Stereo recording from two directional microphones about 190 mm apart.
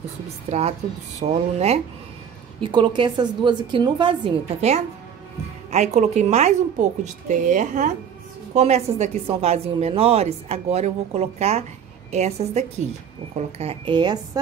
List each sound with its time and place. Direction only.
0.5 s a woman's voice: 35° right (ahead or behind)